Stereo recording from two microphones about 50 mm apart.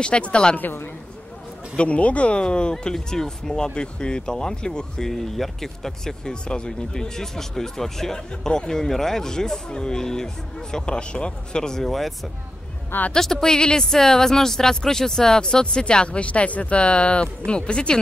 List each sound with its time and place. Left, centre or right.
0.0 s a woman's voice: left
1.8 s speech: left; by 12.1 s centre
13.1 s a woman's voice: centre